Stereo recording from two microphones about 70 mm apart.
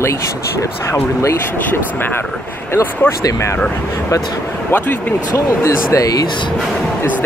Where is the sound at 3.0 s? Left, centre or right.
Left.